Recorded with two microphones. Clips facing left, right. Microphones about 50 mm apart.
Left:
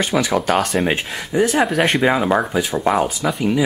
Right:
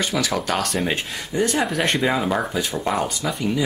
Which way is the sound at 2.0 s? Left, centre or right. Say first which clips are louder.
Left 5 dB; left.